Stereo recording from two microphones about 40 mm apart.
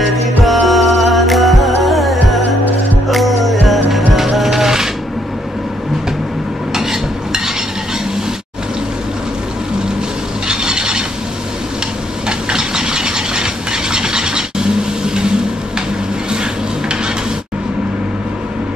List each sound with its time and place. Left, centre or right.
0.0 s music: centre
6.7 s stir: centre
10.5 s wood: centre
12.3 s mechanisms: centre